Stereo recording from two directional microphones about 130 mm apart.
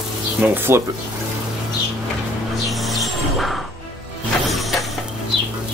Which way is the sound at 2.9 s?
Centre (ahead or behind).